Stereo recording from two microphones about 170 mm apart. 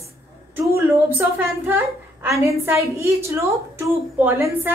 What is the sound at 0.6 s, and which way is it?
A woman's voice, 15° right (ahead or behind).